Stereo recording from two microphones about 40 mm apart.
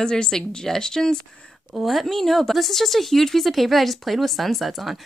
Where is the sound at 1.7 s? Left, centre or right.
Centre.